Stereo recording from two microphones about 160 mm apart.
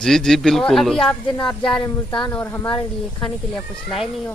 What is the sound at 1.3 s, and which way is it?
Speech, 30° left (ahead or behind).